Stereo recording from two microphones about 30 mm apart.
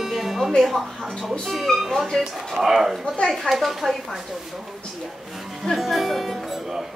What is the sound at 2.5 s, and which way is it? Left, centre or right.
Speech, centre.